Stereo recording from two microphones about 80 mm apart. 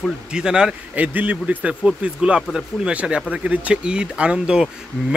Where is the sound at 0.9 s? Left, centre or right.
Right.